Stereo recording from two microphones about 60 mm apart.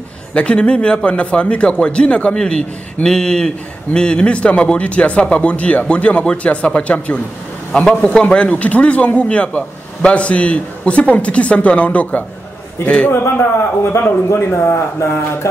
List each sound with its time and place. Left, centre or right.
0.3 s speech: centre
13.1 s a man's voice: left